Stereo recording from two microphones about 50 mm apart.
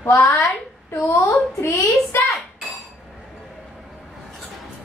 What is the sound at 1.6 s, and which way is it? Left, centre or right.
Speech, left.